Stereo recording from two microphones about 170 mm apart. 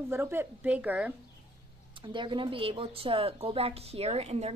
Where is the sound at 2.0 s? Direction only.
30° right (ahead or behind).